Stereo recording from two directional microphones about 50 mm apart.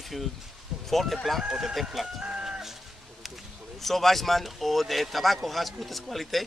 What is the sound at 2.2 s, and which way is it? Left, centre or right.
Chicken, centre.